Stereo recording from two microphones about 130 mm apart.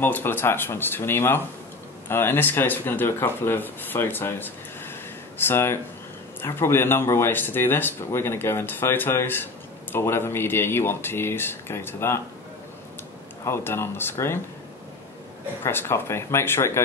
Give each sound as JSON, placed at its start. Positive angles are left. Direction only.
{"t": 0.0, "sound": "speech", "side_deg": 15}
{"t": 13.5, "sound": "speech", "side_deg": 20}
{"t": 15.6, "sound": "speech", "side_deg": 20}